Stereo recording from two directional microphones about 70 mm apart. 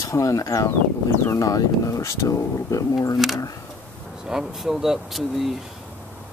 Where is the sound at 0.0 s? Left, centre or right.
Left.